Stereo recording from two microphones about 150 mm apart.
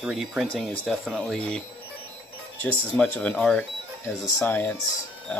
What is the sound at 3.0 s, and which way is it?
Speech, 10° left (ahead or behind).